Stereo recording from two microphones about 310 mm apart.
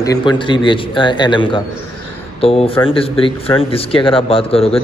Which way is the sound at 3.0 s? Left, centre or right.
Centre.